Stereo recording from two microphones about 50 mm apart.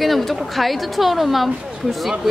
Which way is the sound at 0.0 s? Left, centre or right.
Centre.